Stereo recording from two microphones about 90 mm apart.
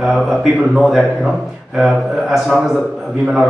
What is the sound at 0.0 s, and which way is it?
Speech, centre (ahead or behind).